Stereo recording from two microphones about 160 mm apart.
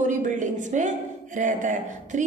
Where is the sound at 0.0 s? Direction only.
50° right (ahead or behind).